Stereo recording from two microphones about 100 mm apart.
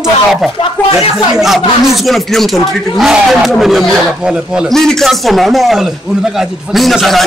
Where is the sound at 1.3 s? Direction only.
Centre (ahead or behind).